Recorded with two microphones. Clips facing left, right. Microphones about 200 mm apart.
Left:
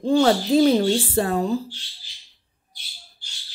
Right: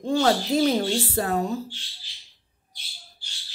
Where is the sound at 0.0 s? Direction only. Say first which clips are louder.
Left 4 dB; 30° left (ahead or behind).